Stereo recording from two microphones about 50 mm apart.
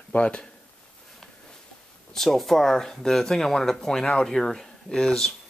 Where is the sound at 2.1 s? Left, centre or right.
Centre.